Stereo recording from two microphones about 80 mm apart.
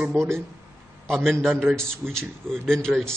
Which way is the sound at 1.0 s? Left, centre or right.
Centre.